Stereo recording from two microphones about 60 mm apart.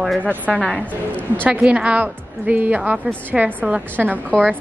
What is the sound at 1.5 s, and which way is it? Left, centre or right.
A woman's voice, centre.